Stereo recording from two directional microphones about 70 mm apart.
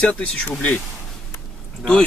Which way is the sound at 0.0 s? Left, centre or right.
Centre.